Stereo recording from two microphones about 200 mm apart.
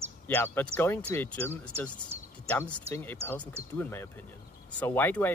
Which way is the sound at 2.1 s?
30° right (ahead or behind).